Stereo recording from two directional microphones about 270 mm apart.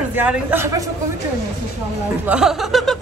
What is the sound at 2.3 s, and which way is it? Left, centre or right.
Speech, centre.